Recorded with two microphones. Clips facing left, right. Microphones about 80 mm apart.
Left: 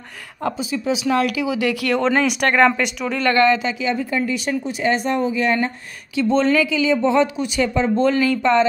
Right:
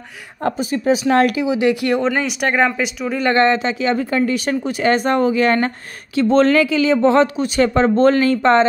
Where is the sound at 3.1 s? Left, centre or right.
Centre.